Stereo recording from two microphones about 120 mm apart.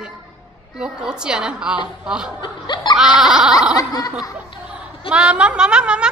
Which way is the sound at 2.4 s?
40° left (ahead or behind).